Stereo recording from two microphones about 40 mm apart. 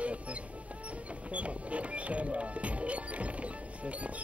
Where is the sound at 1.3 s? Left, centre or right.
Right.